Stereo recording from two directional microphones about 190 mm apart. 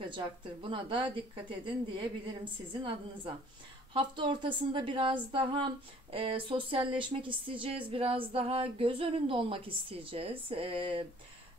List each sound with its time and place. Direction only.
0.1 s speech: 25° right (ahead or behind)
3.9 s speech: 25° right (ahead or behind)